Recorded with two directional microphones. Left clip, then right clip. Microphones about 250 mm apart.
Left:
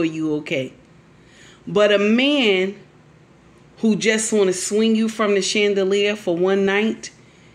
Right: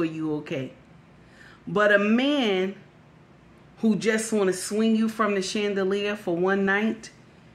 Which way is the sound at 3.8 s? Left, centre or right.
Centre.